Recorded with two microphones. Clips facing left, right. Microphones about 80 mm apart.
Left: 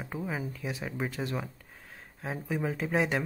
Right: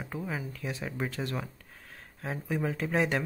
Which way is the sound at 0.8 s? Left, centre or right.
Centre.